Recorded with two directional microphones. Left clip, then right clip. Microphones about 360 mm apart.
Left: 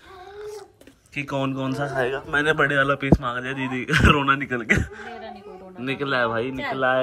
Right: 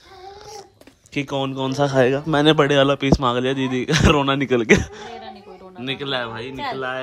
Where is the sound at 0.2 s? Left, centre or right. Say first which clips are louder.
Left 1 dB; centre.